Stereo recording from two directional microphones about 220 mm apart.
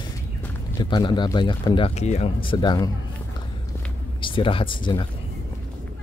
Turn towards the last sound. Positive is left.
turn(degrees=20)  # may be behind; listen again after turning